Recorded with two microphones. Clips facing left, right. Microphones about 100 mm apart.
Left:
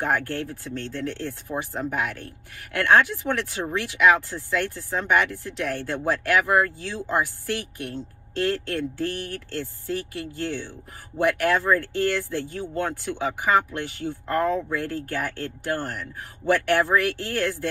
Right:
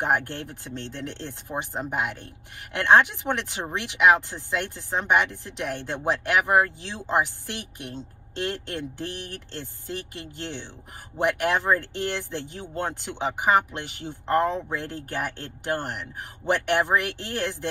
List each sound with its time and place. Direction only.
0.0 s speech: 20° right (ahead or behind)